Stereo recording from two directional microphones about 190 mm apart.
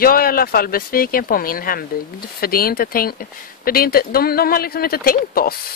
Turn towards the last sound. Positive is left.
turn(degrees=50)  # may be behind; listen again after turning